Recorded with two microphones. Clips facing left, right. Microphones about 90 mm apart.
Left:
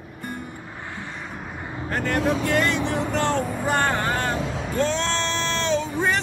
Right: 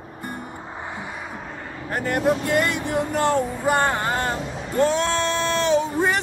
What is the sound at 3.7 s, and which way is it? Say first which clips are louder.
Speech: right 2 dB; 15° right (ahead or behind).